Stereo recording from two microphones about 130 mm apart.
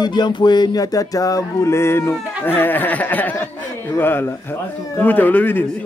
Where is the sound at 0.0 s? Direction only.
35° left (ahead or behind); by 3.3 s 15° left (ahead or behind).